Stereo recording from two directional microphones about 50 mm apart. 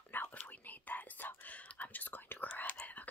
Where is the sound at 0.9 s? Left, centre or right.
Left.